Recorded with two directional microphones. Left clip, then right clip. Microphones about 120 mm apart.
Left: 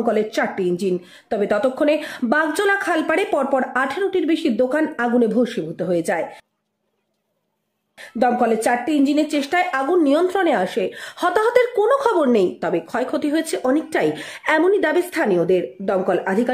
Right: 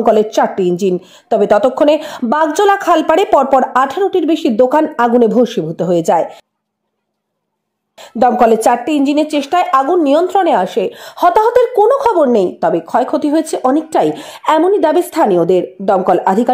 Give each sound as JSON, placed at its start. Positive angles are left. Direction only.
{"t": 0.1, "sound": "a woman's voice", "side_deg": -25}
{"t": 8.5, "sound": "a woman's voice", "side_deg": -35}
{"t": 8.9, "sound": "a woman's voice", "side_deg": -15}